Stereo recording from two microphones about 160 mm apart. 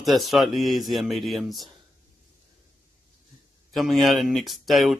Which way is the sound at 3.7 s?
Centre (ahead or behind).